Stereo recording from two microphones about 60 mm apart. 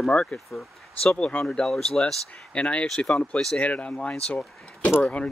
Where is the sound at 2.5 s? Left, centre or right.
Centre.